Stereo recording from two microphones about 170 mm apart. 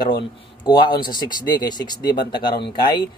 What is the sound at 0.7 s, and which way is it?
A man's voice, 25° left (ahead or behind).